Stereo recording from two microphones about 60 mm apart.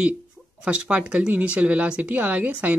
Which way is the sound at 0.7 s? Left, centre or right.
Centre.